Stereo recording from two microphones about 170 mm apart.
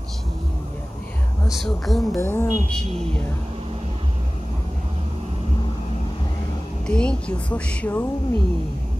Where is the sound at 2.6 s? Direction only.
40° right (ahead or behind).